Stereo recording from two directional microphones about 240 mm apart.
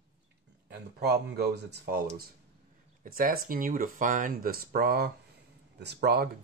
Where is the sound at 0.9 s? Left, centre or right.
Right.